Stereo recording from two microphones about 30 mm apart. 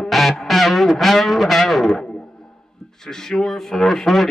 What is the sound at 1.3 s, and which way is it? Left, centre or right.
Music, centre.